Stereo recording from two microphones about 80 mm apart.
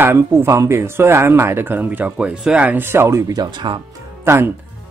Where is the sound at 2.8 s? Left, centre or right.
Right.